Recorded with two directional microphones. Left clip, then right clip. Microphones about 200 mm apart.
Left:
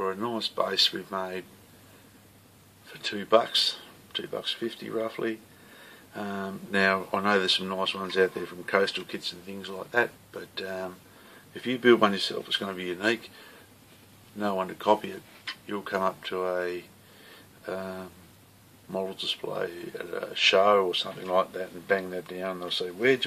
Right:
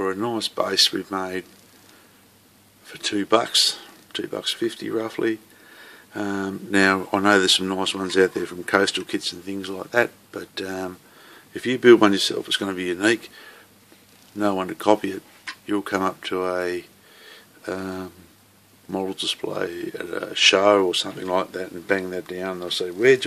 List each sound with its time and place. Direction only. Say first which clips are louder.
0.0 s speech: right 5 dB; 40° right (ahead or behind)
2.9 s speech: right 3 dB; 45° right (ahead or behind)
17.3 s a sound: right 5 dB; 45° right (ahead or behind)
18.9 s speech: right 5 dB; 40° right (ahead or behind)